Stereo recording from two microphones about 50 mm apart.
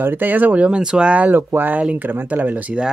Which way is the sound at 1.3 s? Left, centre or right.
Right.